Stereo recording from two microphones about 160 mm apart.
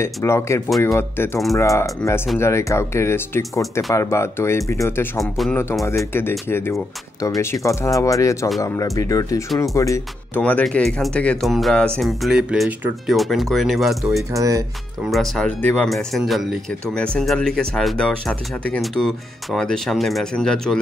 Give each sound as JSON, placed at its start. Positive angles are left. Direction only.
{"t": 0.0, "sound": "speech", "side_deg": 15}
{"t": 0.7, "sound": "speech", "side_deg": 0}
{"t": 0.9, "sound": "speech", "side_deg": 15}
{"t": 5.2, "sound": "speech", "side_deg": 0}
{"t": 5.9, "sound": "speech", "side_deg": 15}
{"t": 14.3, "sound": "speech", "side_deg": -20}
{"t": 15.0, "sound": "speech", "side_deg": 0}